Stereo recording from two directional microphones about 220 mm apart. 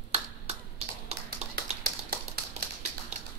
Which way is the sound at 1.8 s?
45° right (ahead or behind).